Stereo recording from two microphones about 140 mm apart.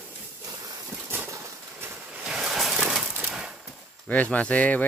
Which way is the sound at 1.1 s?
15° right (ahead or behind).